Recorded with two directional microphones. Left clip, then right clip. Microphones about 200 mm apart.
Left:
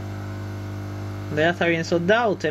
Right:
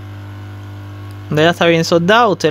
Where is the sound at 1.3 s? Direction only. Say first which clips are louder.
Right 9 dB; 55° right (ahead or behind).